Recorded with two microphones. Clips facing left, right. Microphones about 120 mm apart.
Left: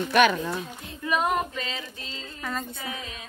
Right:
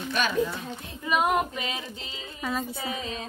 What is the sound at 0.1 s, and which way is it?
Speech, 70° left (ahead or behind).